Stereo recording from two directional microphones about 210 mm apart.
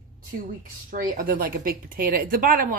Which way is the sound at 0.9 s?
45° right (ahead or behind).